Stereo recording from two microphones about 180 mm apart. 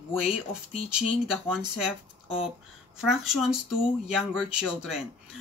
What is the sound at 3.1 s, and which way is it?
Speech, centre (ahead or behind).